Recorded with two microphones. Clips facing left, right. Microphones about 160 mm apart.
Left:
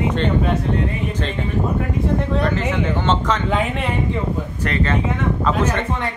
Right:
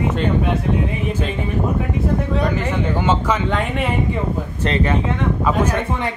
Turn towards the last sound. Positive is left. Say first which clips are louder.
# right 1 dB
turn(degrees=-10)  # may be behind; listen again after turning